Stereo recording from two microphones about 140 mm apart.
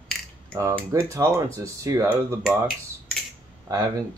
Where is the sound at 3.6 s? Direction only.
25° right (ahead or behind).